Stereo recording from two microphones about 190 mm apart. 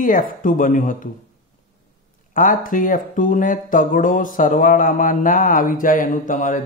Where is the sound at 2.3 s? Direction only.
45° left (ahead or behind).